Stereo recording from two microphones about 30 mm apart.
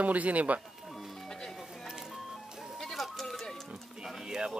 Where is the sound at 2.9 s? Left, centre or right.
Centre.